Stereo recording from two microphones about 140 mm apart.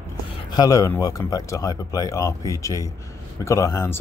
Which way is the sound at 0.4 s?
30° left (ahead or behind).